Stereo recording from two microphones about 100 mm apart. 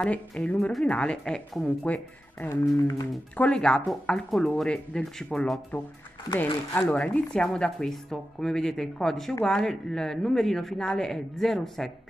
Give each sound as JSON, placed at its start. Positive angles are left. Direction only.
{"t": 0.0, "sound": "speech", "side_deg": 10}
{"t": 2.5, "sound": "a sound", "side_deg": 35}
{"t": 3.3, "sound": "speech", "side_deg": 10}
{"t": 6.9, "sound": "speech", "side_deg": 15}